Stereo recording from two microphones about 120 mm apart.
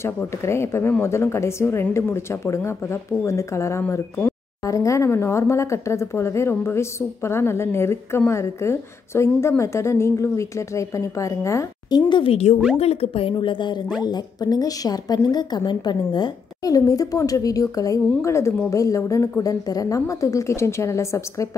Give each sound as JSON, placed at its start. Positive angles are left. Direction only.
{"t": 0.0, "sound": "a woman's voice", "side_deg": 20}
{"t": 12.1, "sound": "a woman's voice", "side_deg": 50}